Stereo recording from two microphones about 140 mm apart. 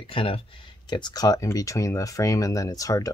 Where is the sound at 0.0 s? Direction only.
40° left (ahead or behind).